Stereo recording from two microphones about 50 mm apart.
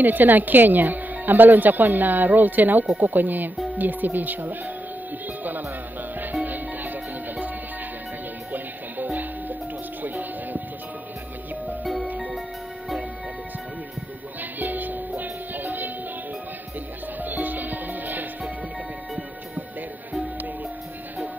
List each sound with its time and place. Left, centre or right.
0.0 s speech: right
6.3 s music: right
11.8 s music: centre
14.6 s music: right
17.2 s music: right